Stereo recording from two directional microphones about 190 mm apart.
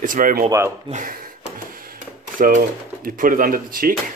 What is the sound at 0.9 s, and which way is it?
Speech, 45° right (ahead or behind).